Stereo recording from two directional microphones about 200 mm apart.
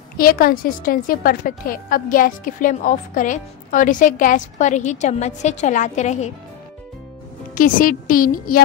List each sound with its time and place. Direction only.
0.2 s a woman's voice: 45° left (ahead or behind)
7.5 s a woman's voice: 45° left (ahead or behind)